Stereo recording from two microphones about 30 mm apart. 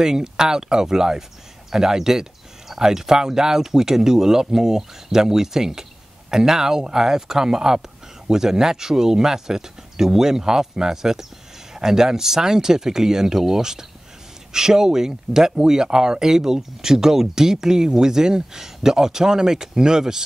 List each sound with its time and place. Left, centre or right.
0.0 s speech: centre